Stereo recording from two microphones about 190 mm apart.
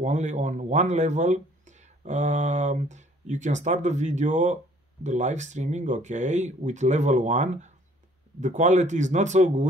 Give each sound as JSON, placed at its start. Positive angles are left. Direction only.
{"t": 0.0, "sound": "speech", "side_deg": -40}